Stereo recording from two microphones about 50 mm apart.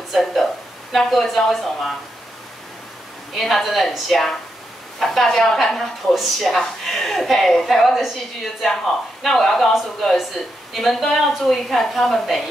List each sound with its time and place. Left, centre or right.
0.1 s a woman's voice: centre
3.3 s a woman's voice: centre
9.2 s a woman's voice: centre